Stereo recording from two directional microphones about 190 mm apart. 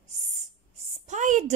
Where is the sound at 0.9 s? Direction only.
40° right (ahead or behind).